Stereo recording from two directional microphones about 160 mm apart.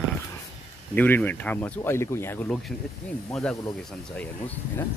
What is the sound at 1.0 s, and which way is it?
Speech, 10° left (ahead or behind).